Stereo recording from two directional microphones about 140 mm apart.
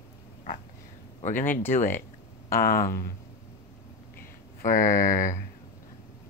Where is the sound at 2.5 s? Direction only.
90° left.